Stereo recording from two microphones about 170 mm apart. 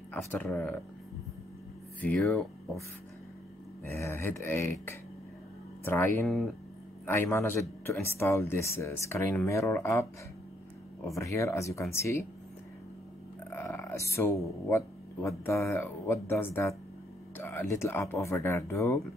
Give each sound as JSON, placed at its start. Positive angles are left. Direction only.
{"t": 0.1, "sound": "speech", "side_deg": 10}
{"t": 2.0, "sound": "speech", "side_deg": 5}
{"t": 3.8, "sound": "speech", "side_deg": 15}
{"t": 5.9, "sound": "speech", "side_deg": 15}
{"t": 6.2, "sound": "speech", "side_deg": 0}
{"t": 7.1, "sound": "speech", "side_deg": 15}
{"t": 11.1, "sound": "speech", "side_deg": 15}
{"t": 13.5, "sound": "a sound", "side_deg": 15}
{"t": 15.2, "sound": "speech", "side_deg": 15}